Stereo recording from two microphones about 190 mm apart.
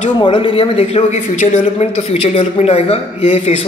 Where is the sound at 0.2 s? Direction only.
25° left (ahead or behind).